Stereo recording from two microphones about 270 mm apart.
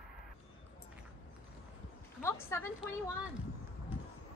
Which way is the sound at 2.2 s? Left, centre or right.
Centre.